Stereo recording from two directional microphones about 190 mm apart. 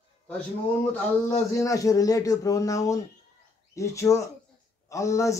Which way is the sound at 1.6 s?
15° left (ahead or behind).